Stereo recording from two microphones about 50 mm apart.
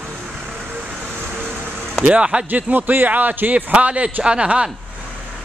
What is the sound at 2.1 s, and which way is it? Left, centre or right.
Speech, centre.